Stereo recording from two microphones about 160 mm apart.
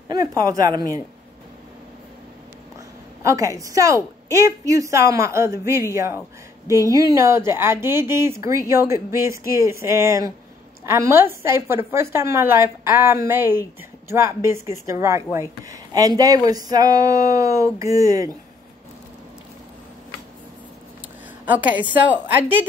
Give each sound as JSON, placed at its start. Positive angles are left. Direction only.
{"t": 0.1, "sound": "a woman's voice", "side_deg": -20}
{"t": 3.3, "sound": "a woman's voice", "side_deg": -20}
{"t": 6.7, "sound": "a woman's voice", "side_deg": -20}
{"t": 22.0, "sound": "speech", "side_deg": -10}